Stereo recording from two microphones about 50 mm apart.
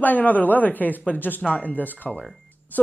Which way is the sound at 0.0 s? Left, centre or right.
Left.